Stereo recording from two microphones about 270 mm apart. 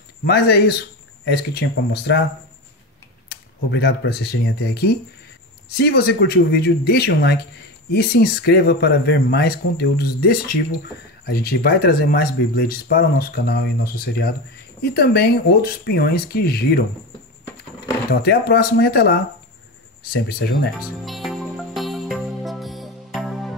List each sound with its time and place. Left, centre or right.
0.2 s speech: left
3.3 s speech: left
18.1 s speech: left
21.0 s music: centre